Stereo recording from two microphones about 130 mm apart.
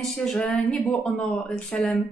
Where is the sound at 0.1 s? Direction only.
5° left (ahead or behind).